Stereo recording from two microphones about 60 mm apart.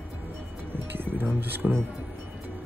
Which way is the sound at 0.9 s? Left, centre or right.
Right.